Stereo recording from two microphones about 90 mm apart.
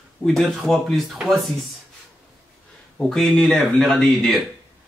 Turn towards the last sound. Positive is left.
turn(degrees=5)  # may be behind; listen again after turning